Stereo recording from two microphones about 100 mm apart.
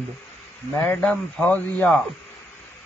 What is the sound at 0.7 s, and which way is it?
Speech, 25° left (ahead or behind).